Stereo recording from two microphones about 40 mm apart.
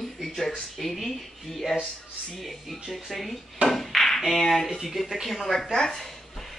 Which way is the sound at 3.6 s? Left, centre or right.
Centre.